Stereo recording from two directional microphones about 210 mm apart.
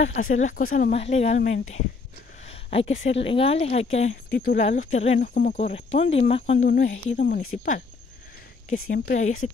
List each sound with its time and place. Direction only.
0.1 s speech: 35° left (ahead or behind)
2.4 s a sound: 30° left (ahead or behind)
2.9 s speech: 65° left (ahead or behind)
3.3 s speech: 25° left (ahead or behind)
7.2 s speech: 40° left (ahead or behind)